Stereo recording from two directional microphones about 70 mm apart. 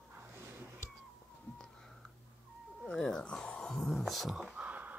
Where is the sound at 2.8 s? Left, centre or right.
Centre.